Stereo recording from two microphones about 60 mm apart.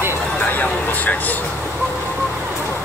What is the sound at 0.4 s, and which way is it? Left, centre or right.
Vehicle, left.